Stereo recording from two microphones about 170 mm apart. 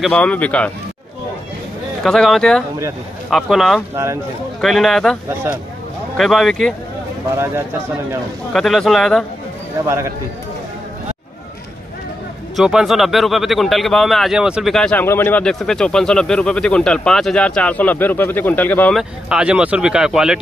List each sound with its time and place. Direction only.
0.0 s speech: 10° left (ahead or behind)
2.0 s speech: centre (ahead or behind)
3.9 s speech: 15° right (ahead or behind)
4.6 s speech: centre (ahead or behind)
7.2 s speech: 15° right (ahead or behind)
8.5 s speech: centre (ahead or behind)
9.8 s speech: 15° right (ahead or behind)
12.5 s speech: centre (ahead or behind)
18.9 s speech: 5° right (ahead or behind)